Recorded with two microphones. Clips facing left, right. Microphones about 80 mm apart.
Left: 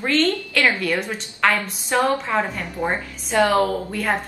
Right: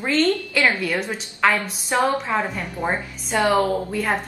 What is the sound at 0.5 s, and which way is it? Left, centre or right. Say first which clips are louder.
Speech: even; centre.